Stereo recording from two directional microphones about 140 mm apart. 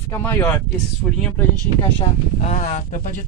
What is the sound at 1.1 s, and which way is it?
Speech, 5° left (ahead or behind).